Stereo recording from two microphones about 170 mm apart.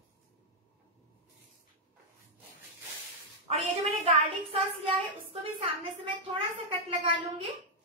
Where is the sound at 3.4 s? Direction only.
40° right (ahead or behind).